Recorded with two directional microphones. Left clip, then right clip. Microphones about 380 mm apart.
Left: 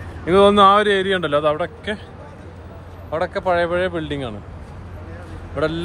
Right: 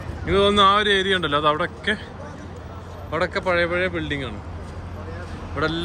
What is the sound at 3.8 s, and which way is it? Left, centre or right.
Speech, left.